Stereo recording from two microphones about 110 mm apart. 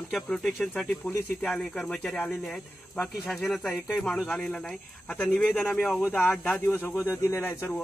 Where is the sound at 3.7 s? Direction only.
15° left (ahead or behind).